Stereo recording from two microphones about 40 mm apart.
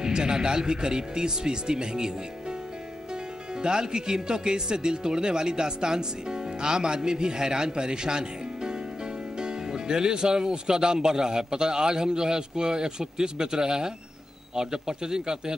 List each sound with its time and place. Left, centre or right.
0.0 s speech: centre
3.6 s speech: centre